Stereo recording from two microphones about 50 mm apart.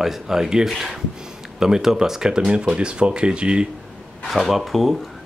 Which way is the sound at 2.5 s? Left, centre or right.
Right.